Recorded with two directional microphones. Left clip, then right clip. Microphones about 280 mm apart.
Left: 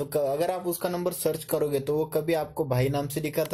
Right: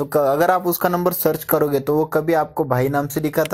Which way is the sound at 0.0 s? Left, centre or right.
Centre.